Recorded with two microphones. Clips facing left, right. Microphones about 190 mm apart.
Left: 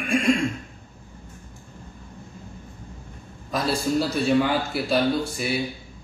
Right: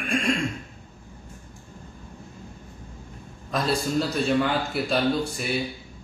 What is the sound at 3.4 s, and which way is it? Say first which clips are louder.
A man's voice: left 1 dB; centre (ahead or behind).